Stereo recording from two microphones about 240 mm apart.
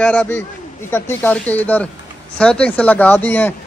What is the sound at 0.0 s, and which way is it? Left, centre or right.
A man's voice, centre.